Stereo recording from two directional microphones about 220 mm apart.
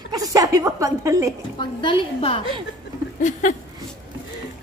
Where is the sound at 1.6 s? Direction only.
20° left (ahead or behind).